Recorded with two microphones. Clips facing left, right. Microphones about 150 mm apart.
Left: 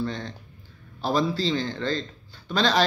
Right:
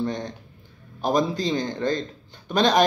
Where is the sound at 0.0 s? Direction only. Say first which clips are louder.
Right 3 dB; 20° right (ahead or behind).